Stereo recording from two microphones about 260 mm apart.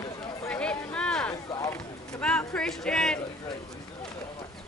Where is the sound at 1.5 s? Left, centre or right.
Centre.